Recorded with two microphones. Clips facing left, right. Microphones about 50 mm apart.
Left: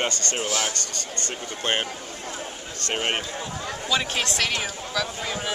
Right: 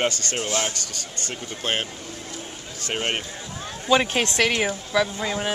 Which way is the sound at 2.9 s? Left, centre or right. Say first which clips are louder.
Even; centre.